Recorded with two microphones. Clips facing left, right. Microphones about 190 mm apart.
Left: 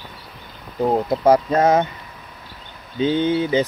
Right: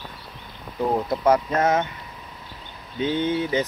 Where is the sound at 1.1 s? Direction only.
35° left (ahead or behind).